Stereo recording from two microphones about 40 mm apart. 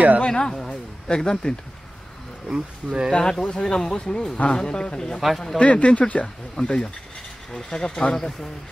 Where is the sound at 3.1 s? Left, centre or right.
Centre.